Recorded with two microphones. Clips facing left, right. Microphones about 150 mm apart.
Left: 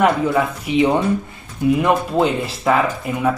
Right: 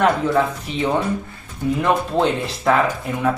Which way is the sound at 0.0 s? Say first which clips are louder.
Left 1 dB; 10° left (ahead or behind).